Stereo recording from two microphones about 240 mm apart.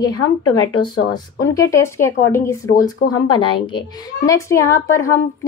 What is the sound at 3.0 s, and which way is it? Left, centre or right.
Speech, left.